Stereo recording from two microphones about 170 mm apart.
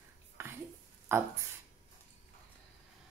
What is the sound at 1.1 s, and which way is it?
Speech, 10° right (ahead or behind).